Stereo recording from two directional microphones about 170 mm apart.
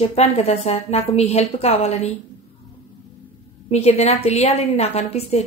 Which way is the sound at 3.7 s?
40° left (ahead or behind).